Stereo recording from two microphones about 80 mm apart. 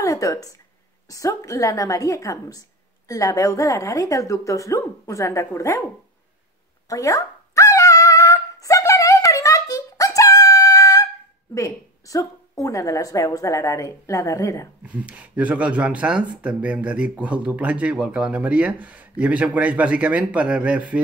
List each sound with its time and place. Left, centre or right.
0.0 s a sound: left
1.0 s a woman's voice: left
6.9 s dog: left
11.5 s a woman's voice: left
14.8 s speech: centre